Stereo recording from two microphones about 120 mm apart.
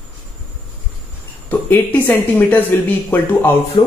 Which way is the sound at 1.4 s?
15° left (ahead or behind).